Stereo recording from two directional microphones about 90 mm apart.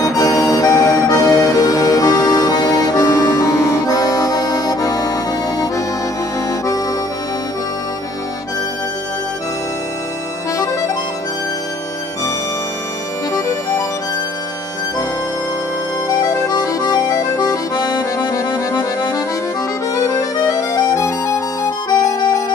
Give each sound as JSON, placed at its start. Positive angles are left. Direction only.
{"t": 0.0, "sound": "music", "side_deg": 40}
{"t": 13.3, "sound": "music", "side_deg": 30}
{"t": 16.2, "sound": "accordion", "side_deg": 45}
{"t": 18.7, "sound": "accordion", "side_deg": 40}
{"t": 20.0, "sound": "music", "side_deg": 40}